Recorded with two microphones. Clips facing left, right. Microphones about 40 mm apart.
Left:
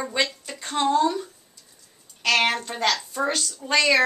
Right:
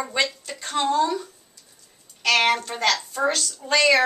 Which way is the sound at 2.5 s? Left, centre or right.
Centre.